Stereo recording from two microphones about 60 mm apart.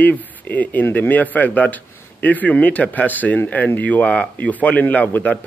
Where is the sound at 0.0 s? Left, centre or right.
Left.